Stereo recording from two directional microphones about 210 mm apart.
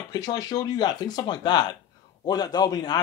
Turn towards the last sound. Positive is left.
turn(degrees=20)  # may be behind; listen again after turning